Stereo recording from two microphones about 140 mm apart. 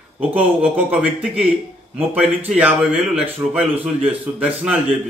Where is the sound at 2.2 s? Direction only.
50° right (ahead or behind).